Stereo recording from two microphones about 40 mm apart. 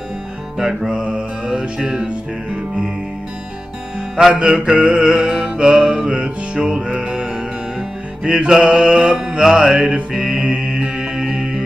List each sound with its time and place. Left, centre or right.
0.6 s music: centre
4.3 s music: right
9.4 s music: centre
9.8 s music: right